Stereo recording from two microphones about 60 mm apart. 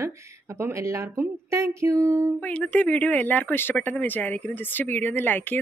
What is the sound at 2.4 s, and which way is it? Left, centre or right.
Speech, left.